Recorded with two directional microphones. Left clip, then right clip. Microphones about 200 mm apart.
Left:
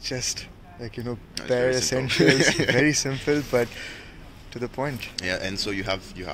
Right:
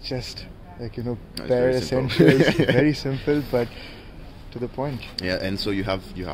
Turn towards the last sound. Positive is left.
turn(degrees=-45)  # may be behind; listen again after turning